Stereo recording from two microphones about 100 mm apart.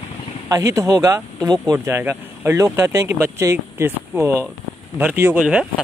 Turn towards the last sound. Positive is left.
turn(degrees=-10)  # may be behind; listen again after turning